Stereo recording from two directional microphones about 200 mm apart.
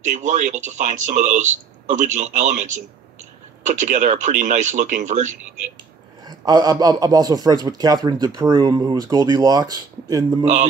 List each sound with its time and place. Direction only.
0.0 s speech: 35° right (ahead or behind)
6.2 s speech: 20° right (ahead or behind)
10.4 s speech: 35° right (ahead or behind)